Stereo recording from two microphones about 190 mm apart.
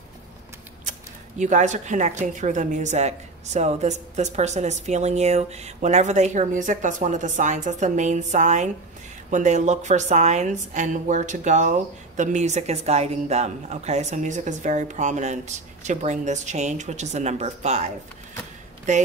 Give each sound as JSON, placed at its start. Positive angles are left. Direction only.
{"t": 1.4, "sound": "a woman's voice", "side_deg": -40}